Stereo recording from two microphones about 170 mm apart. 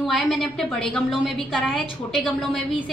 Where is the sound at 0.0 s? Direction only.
Centre (ahead or behind).